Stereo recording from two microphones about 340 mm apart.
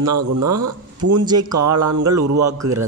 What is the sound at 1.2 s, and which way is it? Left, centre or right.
Speech, centre.